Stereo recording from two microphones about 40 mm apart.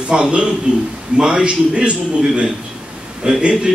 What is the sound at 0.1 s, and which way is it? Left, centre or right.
Speech, right.